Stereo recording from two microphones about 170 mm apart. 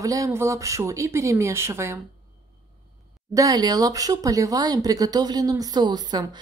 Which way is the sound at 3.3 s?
20° right (ahead or behind).